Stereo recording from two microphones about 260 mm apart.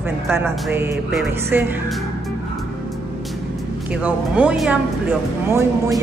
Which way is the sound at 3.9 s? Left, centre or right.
Centre.